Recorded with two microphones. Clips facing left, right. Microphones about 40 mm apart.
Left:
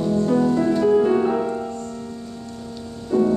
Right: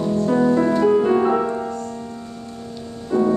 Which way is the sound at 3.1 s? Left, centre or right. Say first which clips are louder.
Even; centre.